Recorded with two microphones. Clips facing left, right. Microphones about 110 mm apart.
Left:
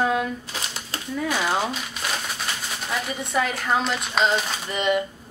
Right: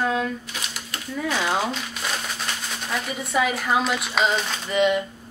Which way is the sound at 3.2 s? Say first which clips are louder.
Right 3 dB; centre (ahead or behind).